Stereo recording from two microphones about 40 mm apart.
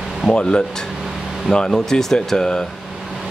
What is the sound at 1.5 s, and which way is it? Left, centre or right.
Speech, centre.